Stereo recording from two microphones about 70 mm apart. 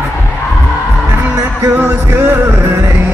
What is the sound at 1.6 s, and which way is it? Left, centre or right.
Music, right.